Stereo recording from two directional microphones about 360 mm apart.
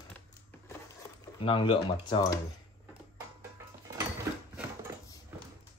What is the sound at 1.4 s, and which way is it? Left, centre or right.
Speech, centre.